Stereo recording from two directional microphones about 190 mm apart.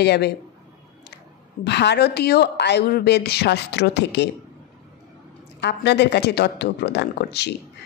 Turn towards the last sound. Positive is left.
turn(degrees=60)  # may be behind; listen again after turning